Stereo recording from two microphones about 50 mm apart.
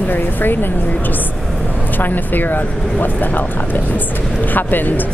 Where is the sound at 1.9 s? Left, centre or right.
Left.